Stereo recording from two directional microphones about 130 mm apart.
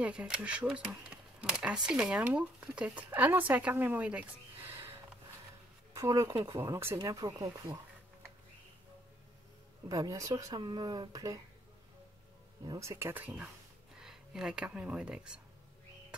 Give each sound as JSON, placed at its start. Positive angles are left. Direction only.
{"t": 0.0, "sound": "speech", "side_deg": -10}
{"t": 5.9, "sound": "speech", "side_deg": -25}
{"t": 9.8, "sound": "speech", "side_deg": -25}
{"t": 12.6, "sound": "speech", "side_deg": -25}